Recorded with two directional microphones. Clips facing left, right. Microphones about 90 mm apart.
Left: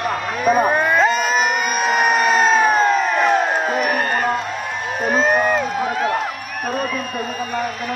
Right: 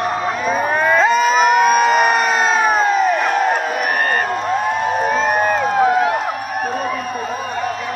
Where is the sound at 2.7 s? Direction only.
Centre (ahead or behind).